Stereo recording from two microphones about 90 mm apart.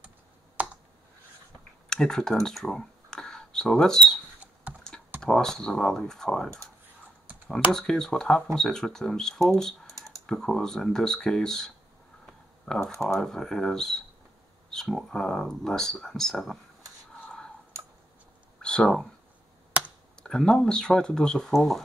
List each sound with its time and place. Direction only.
0.6 s computer keyboard: 15° right (ahead or behind)
1.9 s speech: 5° left (ahead or behind)
5.2 s speech: 5° left (ahead or behind)
18.6 s a sound: 10° left (ahead or behind)
20.2 s speech: 10° left (ahead or behind)